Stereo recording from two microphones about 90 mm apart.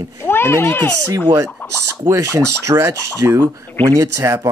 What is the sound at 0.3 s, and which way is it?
Speech, 25° left (ahead or behind).